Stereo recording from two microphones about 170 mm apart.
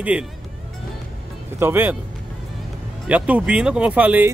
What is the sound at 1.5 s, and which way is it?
Speech, 10° right (ahead or behind).